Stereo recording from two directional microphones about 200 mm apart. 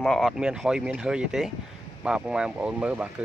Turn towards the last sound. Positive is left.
turn(degrees=-5)  # may be behind; listen again after turning